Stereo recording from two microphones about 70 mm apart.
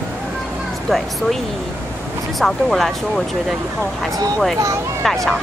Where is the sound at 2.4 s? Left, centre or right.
Centre.